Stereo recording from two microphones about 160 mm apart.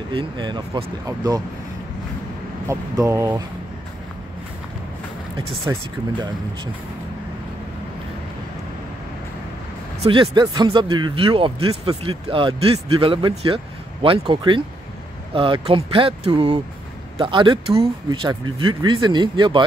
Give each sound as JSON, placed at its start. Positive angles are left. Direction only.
{"t": 0.1, "sound": "speech", "side_deg": -30}
{"t": 2.7, "sound": "speech", "side_deg": -20}
{"t": 5.7, "sound": "speech", "side_deg": -20}
{"t": 10.0, "sound": "speech", "side_deg": -35}